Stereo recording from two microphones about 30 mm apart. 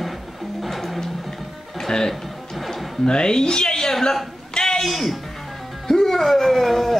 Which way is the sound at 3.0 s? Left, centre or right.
Left.